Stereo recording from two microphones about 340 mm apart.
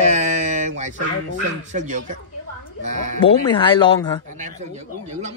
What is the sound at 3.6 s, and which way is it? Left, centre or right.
Speech, centre.